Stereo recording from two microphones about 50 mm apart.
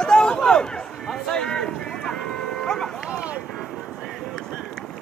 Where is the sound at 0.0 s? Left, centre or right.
Centre.